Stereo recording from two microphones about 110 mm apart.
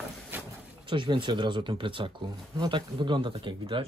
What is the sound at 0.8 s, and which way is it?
Speech, 45° right (ahead or behind).